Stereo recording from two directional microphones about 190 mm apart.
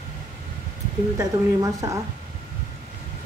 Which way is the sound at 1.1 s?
15° right (ahead or behind).